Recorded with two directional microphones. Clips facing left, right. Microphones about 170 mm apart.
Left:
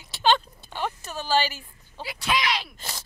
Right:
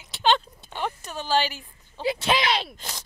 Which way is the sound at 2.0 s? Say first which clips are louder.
Right 4 dB; 25° right (ahead or behind).